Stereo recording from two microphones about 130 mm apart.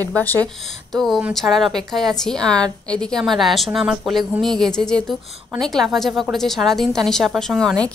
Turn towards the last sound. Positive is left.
turn(degrees=5)  # may be behind; listen again after turning